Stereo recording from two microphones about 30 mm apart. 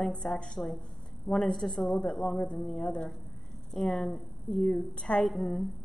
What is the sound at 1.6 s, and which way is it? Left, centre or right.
A woman's voice, left.